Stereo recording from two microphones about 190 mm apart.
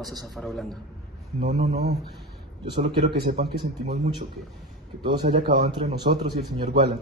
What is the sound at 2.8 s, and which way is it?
Speech, 55° right (ahead or behind).